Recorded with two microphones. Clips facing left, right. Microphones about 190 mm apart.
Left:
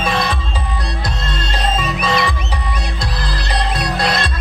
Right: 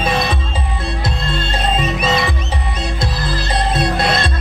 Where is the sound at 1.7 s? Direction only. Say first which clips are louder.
Right 1 dB; 25° right (ahead or behind).